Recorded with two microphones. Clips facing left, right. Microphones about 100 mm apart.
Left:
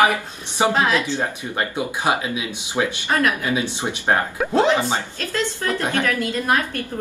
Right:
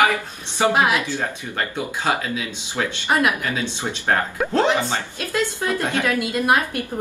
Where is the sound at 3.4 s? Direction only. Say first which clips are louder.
Left 2 dB; 15° left (ahead or behind).